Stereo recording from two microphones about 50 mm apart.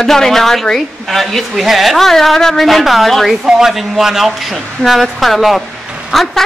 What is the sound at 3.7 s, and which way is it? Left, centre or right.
A woman's voice, centre.